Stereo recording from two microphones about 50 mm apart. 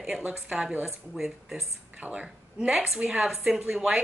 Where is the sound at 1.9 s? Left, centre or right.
Right.